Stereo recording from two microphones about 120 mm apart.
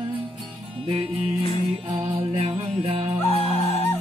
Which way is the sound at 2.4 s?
50° right (ahead or behind).